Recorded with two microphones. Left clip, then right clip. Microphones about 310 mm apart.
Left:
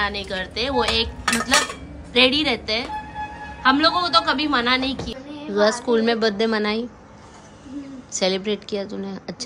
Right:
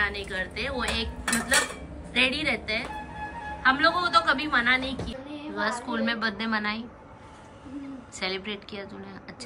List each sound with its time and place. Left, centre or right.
0.0 s a woman's voice: centre
8.1 s a woman's voice: centre